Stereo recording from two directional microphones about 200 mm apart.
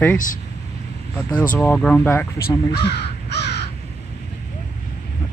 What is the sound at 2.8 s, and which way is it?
Crow, 55° left (ahead or behind).